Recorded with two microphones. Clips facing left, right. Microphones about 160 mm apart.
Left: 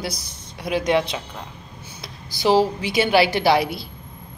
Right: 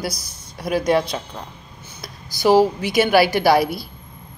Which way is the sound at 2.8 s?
50° right (ahead or behind).